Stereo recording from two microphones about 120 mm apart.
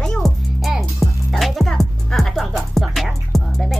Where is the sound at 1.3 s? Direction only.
Centre (ahead or behind).